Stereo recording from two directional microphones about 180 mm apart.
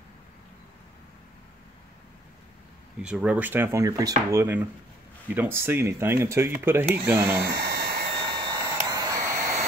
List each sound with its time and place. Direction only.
3.0 s speech: 5° right (ahead or behind)
7.5 s a sound: 60° right (ahead or behind)
8.3 s hair dryer: 20° right (ahead or behind)